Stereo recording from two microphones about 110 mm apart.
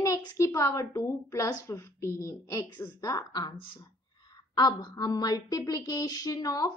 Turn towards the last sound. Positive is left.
turn(degrees=35)  # may be behind; listen again after turning